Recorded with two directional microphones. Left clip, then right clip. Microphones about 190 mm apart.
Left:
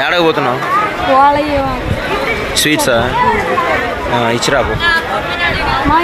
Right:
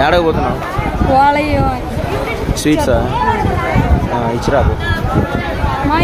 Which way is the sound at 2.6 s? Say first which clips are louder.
Even; 10° right (ahead or behind).